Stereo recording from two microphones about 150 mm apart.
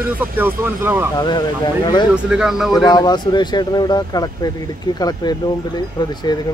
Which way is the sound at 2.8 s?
25° left (ahead or behind).